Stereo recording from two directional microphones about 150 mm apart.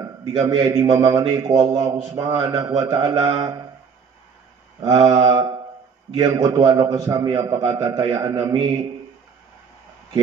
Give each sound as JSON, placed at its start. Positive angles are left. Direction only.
{"t": 0.0, "sound": "a man's voice", "side_deg": -30}
{"t": 4.8, "sound": "a man's voice", "side_deg": -25}